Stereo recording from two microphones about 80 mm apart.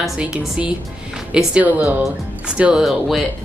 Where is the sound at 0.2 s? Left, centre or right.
Centre.